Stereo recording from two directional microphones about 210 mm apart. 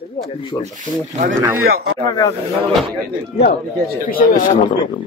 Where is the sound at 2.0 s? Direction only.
15° left (ahead or behind).